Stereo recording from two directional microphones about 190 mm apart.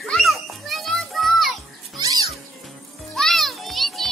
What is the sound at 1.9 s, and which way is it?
Cat, 20° right (ahead or behind).